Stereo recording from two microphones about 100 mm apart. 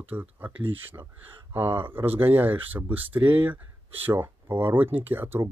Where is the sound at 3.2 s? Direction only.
55° right (ahead or behind).